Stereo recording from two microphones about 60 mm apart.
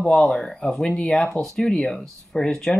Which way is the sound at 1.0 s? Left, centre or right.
Centre.